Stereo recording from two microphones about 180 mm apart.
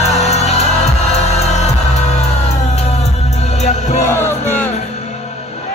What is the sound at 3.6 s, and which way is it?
Music, 40° left (ahead or behind).